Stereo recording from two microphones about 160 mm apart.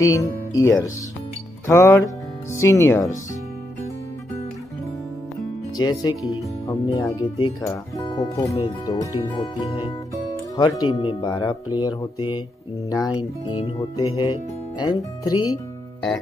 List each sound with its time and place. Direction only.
0.0 s speech: 20° left (ahead or behind)
5.8 s speech: 25° left (ahead or behind)
11.2 s speech: 20° left (ahead or behind)
12.9 s speech: 25° left (ahead or behind)